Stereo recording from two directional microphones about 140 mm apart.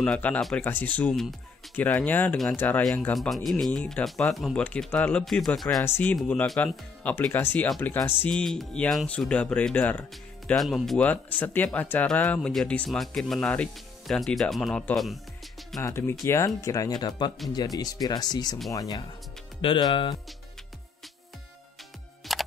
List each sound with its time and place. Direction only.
0.0 s speech: 10° left (ahead or behind)
15.8 s speech: 15° left (ahead or behind); by 20.2 s 35° left (ahead or behind)
22.3 s computer keyboard: centre (ahead or behind)